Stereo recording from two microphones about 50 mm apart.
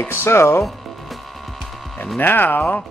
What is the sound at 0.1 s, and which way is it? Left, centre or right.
Speech, left.